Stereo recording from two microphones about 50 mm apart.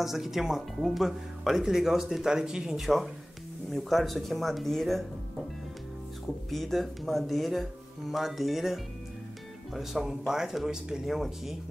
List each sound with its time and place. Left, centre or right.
0.0 s speech: centre
3.7 s speech: centre
6.5 s speech: centre